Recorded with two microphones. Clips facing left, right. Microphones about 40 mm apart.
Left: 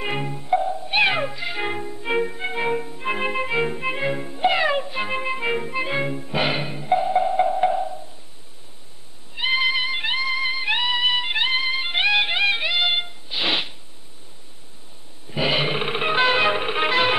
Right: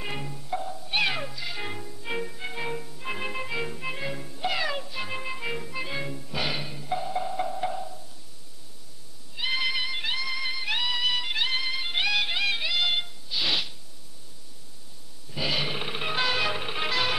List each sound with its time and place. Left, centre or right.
0.0 s music: left
9.3 s music: left
15.2 s music: left